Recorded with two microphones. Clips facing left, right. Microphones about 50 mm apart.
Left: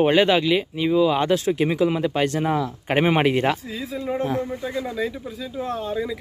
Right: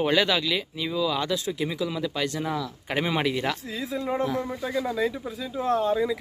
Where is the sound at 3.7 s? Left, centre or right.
Centre.